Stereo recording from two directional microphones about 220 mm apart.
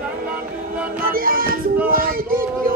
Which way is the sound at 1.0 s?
40° right (ahead or behind).